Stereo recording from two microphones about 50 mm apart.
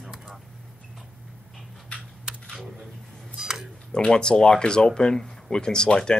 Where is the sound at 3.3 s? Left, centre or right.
Centre.